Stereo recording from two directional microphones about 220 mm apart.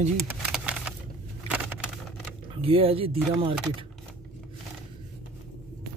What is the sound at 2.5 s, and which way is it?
Speech, 25° right (ahead or behind).